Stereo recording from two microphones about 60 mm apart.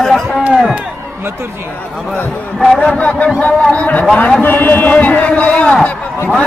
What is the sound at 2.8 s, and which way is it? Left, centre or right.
A man's voice, centre.